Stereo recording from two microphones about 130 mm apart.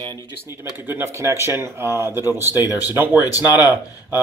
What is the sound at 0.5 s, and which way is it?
Speech, 15° right (ahead or behind).